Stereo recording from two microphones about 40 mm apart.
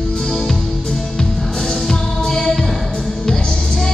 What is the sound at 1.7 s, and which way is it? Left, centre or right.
Music, centre.